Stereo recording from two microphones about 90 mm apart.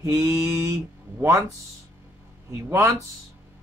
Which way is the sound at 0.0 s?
30° right (ahead or behind).